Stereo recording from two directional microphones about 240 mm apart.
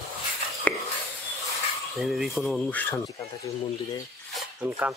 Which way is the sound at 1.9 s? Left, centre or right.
Centre.